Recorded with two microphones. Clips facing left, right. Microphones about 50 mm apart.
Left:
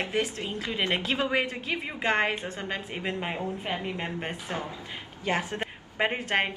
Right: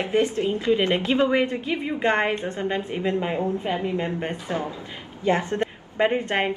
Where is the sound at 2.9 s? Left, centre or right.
Centre.